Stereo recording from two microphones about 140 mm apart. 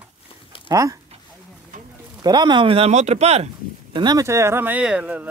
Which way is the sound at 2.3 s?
30° right (ahead or behind).